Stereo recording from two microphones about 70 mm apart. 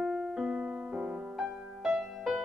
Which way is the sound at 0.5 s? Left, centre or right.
Centre.